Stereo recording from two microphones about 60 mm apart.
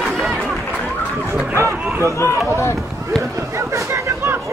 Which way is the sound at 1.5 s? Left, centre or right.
Right.